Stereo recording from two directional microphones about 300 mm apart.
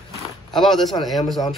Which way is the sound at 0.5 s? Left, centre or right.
Centre.